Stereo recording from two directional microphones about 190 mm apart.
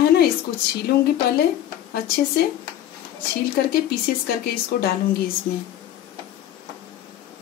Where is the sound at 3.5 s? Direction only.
55° left (ahead or behind).